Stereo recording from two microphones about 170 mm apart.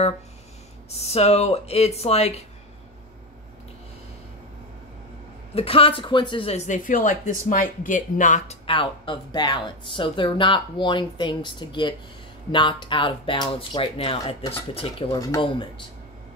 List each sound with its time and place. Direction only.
0.8 s speech: 40° left (ahead or behind)
5.5 s speech: 35° left (ahead or behind)
8.6 s speech: 30° left (ahead or behind)